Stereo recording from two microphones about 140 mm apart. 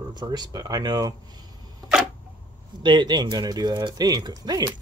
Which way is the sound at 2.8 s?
35° right (ahead or behind).